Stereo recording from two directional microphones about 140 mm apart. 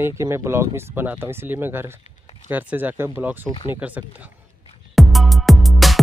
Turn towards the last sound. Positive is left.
turn(degrees=0)  # may be behind; listen again after turning